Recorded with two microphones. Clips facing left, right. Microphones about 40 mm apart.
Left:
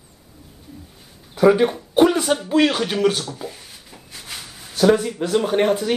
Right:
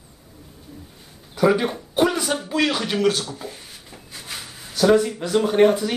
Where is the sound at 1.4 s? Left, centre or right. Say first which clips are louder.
Left 4 dB; centre.